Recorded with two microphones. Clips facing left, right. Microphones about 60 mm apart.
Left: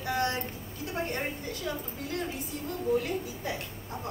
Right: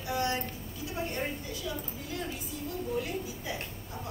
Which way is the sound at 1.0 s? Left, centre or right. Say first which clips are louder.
Left 2 dB; left.